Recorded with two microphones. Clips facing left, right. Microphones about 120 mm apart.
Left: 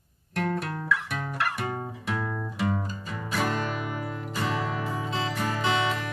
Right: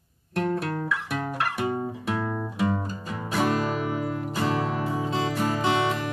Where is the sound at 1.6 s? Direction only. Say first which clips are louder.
Right 5 dB; 20° right (ahead or behind).